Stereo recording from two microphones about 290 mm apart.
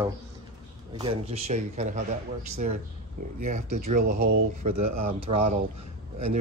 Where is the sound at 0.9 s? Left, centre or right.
Centre.